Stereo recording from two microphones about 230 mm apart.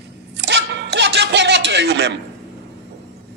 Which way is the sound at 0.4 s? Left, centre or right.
Right.